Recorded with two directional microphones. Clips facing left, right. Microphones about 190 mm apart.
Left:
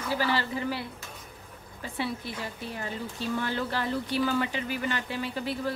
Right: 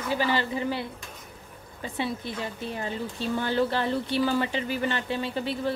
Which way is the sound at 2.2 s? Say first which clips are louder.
Right 4 dB; 20° right (ahead or behind).